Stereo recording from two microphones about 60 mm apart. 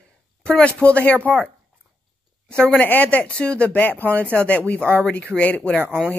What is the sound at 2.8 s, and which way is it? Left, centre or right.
Speech, left.